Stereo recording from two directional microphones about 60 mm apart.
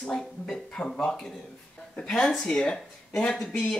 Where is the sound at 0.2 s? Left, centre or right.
Centre.